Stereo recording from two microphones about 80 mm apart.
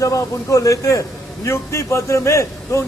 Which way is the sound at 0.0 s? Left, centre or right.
Left.